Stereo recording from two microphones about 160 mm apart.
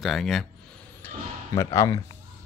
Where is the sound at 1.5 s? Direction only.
20° left (ahead or behind).